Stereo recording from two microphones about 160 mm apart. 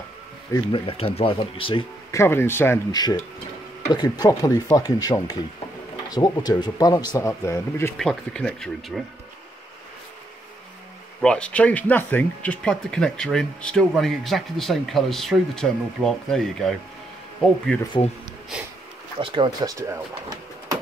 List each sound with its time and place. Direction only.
0.7 s speech: 35° left (ahead or behind)
2.0 s speech: 15° left (ahead or behind)
2.9 s speech: 25° left (ahead or behind)
8.0 s speech: 5° left (ahead or behind)
11.1 s speech: 5° left (ahead or behind)
19.1 s speech: 30° right (ahead or behind)